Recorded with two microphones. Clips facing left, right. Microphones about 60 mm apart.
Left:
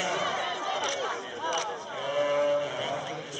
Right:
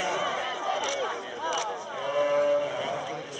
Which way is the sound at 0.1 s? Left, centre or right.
Centre.